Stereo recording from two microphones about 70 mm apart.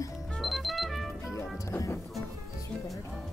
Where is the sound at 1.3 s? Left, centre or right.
Left.